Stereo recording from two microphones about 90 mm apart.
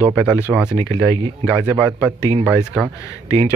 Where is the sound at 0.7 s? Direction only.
75° right (ahead or behind).